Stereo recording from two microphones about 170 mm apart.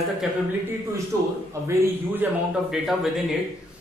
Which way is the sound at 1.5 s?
15° right (ahead or behind).